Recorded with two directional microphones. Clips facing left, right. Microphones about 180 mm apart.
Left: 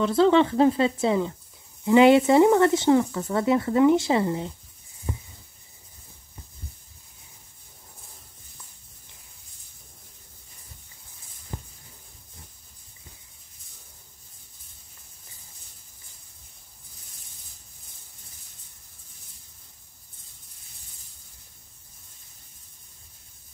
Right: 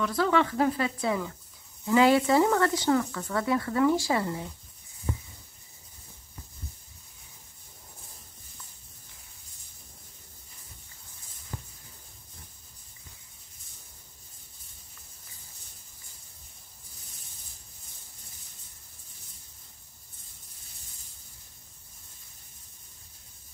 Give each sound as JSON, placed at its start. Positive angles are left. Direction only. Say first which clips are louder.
{"t": 0.0, "sound": "speech", "louder": "left 7 dB", "side_deg": 25}
{"t": 11.5, "sound": "music", "louder": "left 3 dB", "side_deg": 15}